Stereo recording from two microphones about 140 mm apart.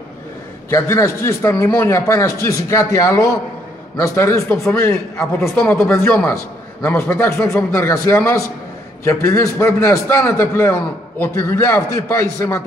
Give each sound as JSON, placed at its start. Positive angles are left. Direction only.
{"t": 0.7, "sound": "a man's voice", "side_deg": 20}